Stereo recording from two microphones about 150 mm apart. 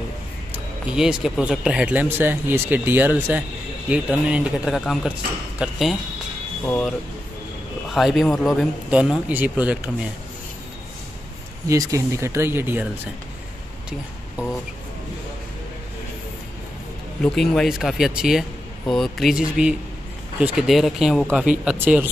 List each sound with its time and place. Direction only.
0.8 s speech: 5° right (ahead or behind)
11.6 s speech: 20° right (ahead or behind)
17.2 s speech: 5° left (ahead or behind); by 22.1 s 10° right (ahead or behind)